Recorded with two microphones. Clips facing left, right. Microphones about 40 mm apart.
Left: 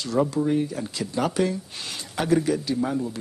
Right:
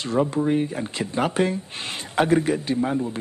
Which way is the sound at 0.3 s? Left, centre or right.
Right.